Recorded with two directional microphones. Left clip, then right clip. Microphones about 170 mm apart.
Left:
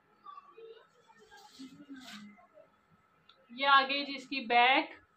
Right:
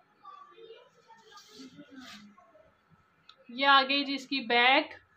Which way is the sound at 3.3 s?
45° right (ahead or behind).